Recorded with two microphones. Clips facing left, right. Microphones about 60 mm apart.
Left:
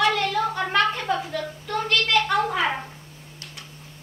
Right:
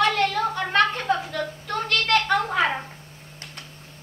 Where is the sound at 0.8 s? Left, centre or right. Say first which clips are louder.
Right 2 dB; right.